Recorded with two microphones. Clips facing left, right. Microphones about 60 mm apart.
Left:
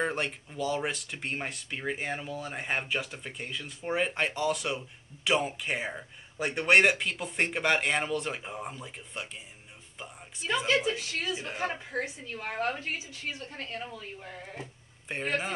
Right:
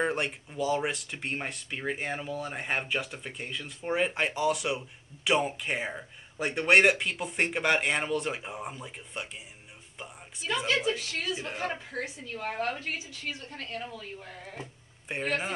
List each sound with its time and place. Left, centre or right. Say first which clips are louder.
0.0 s speech: right 1 dB; centre
11.0 s a woman's voice: even; left
11.4 s speech: even; centre
11.9 s a woman's voice: left 2 dB; left
14.6 s a sound: even; centre